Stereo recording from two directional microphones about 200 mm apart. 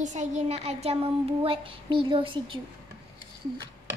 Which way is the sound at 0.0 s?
35° right (ahead or behind).